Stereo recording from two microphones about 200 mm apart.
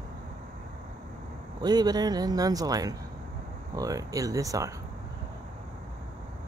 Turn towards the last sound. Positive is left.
turn(degrees=-15)  # may be behind; listen again after turning